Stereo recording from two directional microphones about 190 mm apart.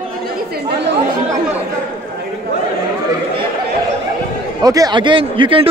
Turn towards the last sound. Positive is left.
turn(degrees=-25)  # may be behind; listen again after turning